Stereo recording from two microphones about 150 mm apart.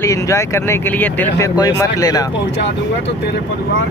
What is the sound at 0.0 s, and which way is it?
Speech, 20° left (ahead or behind).